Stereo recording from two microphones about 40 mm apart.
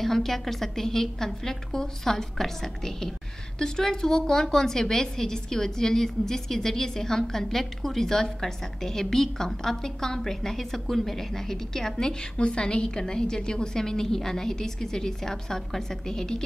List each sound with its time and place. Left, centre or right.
0.0 s a woman's voice: centre
12.4 s a woman's voice: left